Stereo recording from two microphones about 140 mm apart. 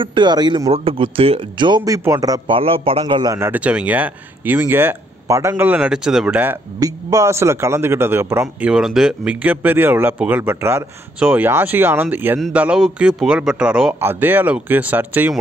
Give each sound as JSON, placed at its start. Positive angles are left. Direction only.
{"t": 0.0, "sound": "a man's voice", "side_deg": -35}
{"t": 0.7, "sound": "a man's voice", "side_deg": -45}
{"t": 1.8, "sound": "a man's voice", "side_deg": -25}
{"t": 2.5, "sound": "a man's voice", "side_deg": -40}
{"t": 3.3, "sound": "a man's voice", "side_deg": -15}
{"t": 6.8, "sound": "a man's voice", "side_deg": -25}